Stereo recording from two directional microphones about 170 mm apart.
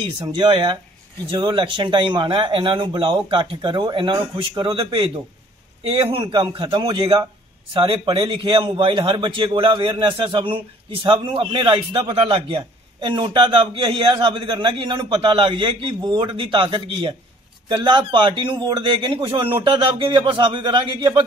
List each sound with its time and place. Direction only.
0.0 s a man's voice: 25° right (ahead or behind)